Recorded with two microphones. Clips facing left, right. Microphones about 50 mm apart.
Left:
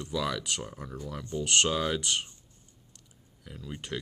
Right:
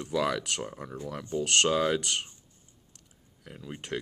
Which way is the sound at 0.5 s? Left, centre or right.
Centre.